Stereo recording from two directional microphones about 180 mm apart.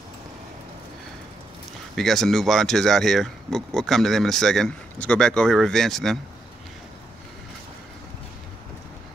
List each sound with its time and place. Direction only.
2.0 s speech: centre (ahead or behind)